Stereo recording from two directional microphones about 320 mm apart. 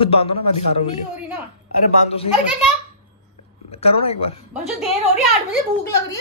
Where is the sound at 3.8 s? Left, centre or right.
Centre.